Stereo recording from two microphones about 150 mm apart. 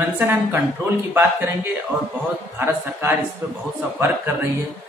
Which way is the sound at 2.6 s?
15° right (ahead or behind).